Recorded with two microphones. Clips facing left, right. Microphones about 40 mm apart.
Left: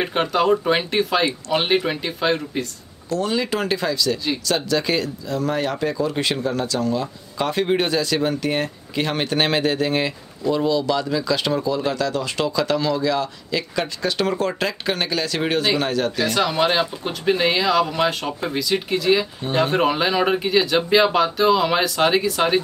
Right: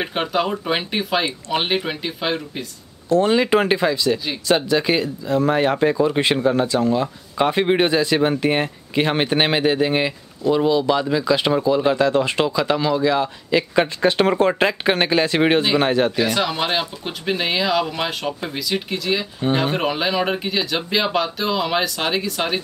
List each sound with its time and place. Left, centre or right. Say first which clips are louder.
0.0 s speech: left 2 dB; centre
3.1 s speech: right 6 dB; right
12.4 s speech: right 1 dB; centre
16.2 s speech: left 1 dB; centre